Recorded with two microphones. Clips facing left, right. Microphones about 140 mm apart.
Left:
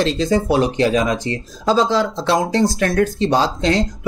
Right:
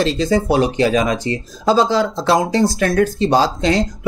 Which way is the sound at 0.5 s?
5° right (ahead or behind).